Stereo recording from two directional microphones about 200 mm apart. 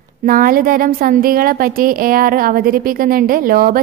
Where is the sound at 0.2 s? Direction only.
45° right (ahead or behind).